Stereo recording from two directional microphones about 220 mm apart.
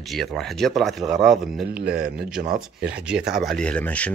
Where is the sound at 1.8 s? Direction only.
45° right (ahead or behind).